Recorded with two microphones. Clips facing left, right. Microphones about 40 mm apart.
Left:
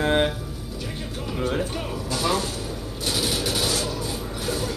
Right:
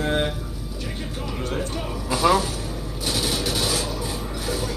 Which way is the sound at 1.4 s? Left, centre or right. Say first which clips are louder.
Left 3 dB; centre.